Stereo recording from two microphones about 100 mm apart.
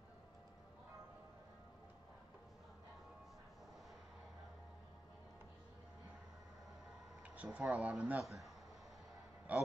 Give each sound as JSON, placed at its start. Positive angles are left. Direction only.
{"t": 7.2, "sound": "speech", "side_deg": -15}
{"t": 9.5, "sound": "a man's voice", "side_deg": -15}